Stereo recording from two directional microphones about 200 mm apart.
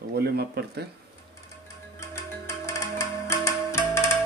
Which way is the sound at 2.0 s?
15° left (ahead or behind).